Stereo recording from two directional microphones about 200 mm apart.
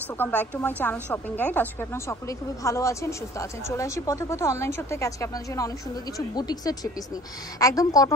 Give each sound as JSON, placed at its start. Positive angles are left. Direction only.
{"t": 0.2, "sound": "speech", "side_deg": 10}